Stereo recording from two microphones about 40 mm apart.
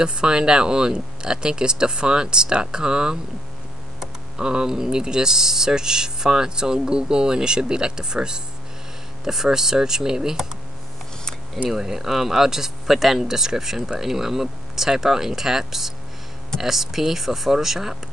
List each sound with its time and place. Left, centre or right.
0.0 s speech: right
4.4 s speech: right
11.7 s speech: centre